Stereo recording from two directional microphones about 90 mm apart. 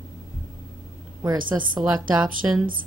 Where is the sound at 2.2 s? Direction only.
5° right (ahead or behind).